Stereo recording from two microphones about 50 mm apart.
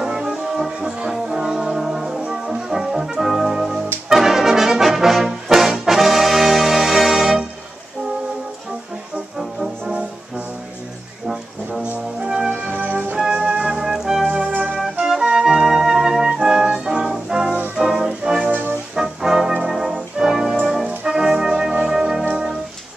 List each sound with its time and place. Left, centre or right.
0.0 s music: centre
2.4 s brass instrument: centre
9.4 s music: centre
12.2 s music: centre
12.4 s music: right
13.3 s music: right
14.3 s organ: right
15.3 s music: centre
18.5 s music: right
18.9 s music: centre